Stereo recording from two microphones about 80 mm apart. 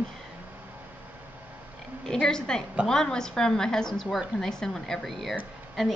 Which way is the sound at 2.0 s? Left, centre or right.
Centre.